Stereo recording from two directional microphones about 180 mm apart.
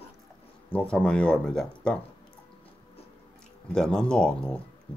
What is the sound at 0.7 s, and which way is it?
Speech, 5° left (ahead or behind).